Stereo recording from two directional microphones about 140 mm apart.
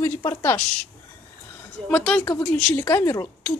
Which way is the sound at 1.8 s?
5° left (ahead or behind).